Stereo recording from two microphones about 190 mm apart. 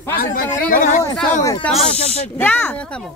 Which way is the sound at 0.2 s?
45° left (ahead or behind).